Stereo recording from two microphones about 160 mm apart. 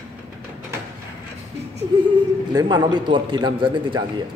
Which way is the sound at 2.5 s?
25° right (ahead or behind).